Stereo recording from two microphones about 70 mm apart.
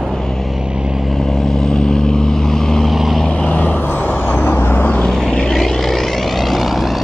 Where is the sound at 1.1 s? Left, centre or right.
Centre.